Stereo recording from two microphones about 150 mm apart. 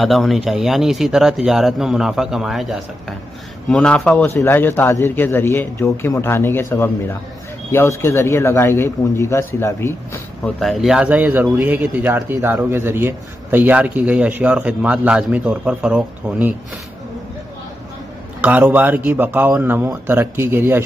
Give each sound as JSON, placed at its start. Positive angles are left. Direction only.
{"t": 0.0, "sound": "a man's voice", "side_deg": 0}
{"t": 10.6, "sound": "speech", "side_deg": 0}
{"t": 18.4, "sound": "speech", "side_deg": -10}